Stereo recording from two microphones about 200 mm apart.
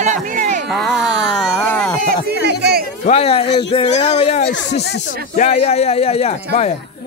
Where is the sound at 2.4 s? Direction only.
55° right (ahead or behind).